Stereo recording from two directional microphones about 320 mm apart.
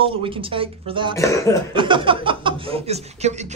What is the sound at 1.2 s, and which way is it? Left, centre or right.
Cough, centre.